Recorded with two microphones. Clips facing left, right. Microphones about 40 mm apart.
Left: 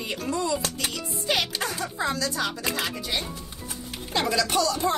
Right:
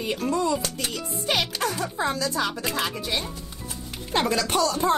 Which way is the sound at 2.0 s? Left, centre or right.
Right.